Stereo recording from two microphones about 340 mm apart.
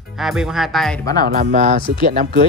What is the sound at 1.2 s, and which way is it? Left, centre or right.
Speech, right.